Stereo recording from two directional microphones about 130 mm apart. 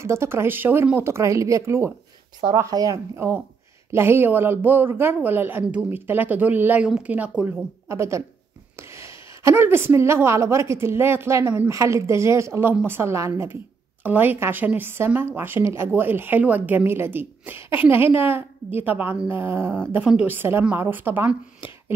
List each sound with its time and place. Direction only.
0.0 s a woman's voice: 20° right (ahead or behind)
7.9 s a woman's voice: 20° right (ahead or behind)